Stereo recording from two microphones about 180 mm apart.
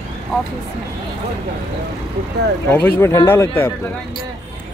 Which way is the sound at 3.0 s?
15° left (ahead or behind).